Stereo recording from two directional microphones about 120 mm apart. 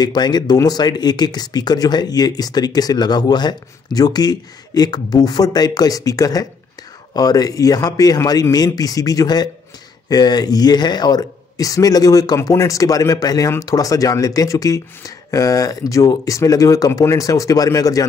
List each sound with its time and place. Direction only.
0.0 s speech: 35° left (ahead or behind)